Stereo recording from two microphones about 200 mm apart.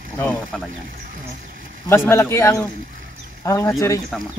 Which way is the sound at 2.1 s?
15° left (ahead or behind).